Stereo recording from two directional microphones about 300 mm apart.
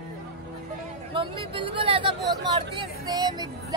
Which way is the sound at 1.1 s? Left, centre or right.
Centre.